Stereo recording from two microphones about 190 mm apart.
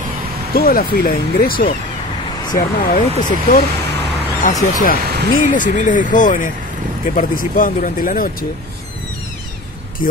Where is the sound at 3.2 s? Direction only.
45° left (ahead or behind).